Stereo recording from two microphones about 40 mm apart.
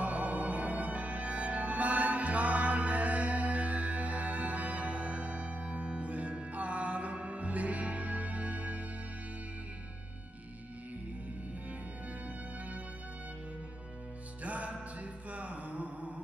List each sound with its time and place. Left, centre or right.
0.0 s music: right
14.4 s music: right